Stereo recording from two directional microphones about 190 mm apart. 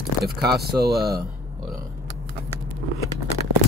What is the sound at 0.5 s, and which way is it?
Speech, 55° right (ahead or behind).